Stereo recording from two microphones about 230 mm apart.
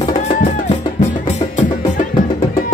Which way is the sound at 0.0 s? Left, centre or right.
Left.